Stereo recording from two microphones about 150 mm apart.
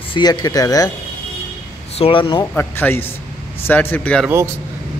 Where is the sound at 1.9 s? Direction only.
40° left (ahead or behind).